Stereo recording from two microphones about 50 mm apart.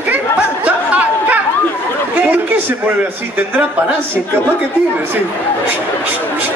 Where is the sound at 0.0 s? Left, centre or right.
Right.